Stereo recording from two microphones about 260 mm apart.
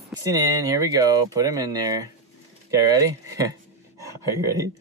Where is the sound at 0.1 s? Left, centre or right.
Centre.